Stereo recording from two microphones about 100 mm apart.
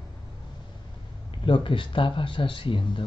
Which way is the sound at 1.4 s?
60° left (ahead or behind).